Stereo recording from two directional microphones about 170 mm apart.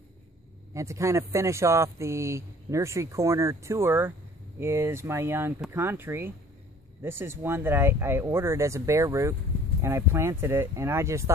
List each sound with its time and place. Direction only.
0.7 s speech: 15° right (ahead or behind)